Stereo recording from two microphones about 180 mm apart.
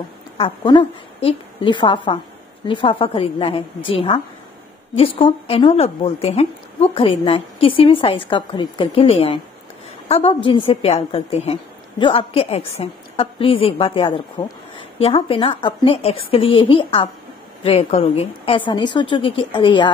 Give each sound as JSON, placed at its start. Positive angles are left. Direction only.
{"t": 0.4, "sound": "a woman's voice", "side_deg": 30}